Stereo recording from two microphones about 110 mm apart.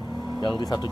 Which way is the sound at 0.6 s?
40° left (ahead or behind).